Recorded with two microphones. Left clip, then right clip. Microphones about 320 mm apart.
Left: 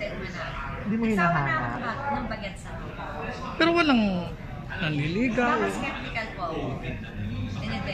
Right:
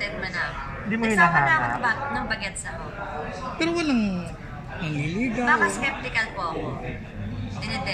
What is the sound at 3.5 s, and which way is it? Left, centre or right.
A man's voice, left.